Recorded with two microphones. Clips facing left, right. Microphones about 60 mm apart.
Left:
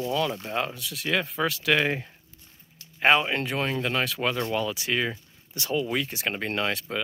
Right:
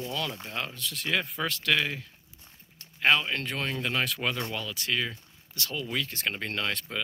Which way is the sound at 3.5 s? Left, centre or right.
Centre.